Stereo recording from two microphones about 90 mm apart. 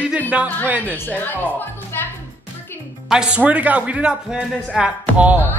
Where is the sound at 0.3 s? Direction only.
10° right (ahead or behind).